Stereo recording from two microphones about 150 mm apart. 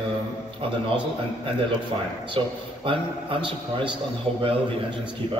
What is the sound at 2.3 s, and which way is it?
A man's voice, 35° right (ahead or behind).